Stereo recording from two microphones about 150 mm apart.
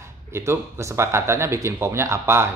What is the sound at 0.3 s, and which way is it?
Speech, 20° right (ahead or behind).